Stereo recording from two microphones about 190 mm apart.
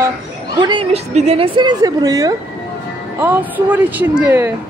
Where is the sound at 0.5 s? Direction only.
25° right (ahead or behind).